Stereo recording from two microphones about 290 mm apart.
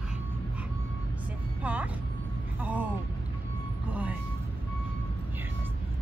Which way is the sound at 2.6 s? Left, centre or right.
Centre.